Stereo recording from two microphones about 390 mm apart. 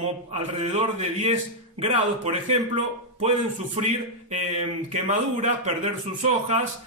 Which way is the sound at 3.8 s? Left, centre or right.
Centre.